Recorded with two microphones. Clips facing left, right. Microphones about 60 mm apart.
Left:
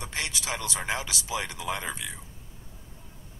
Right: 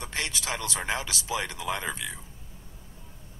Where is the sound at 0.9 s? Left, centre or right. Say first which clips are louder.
Right 1 dB; right.